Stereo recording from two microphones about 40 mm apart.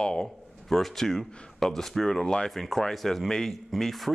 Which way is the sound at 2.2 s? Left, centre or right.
Centre.